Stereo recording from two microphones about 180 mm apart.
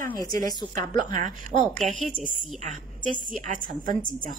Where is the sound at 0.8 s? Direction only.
45° right (ahead or behind).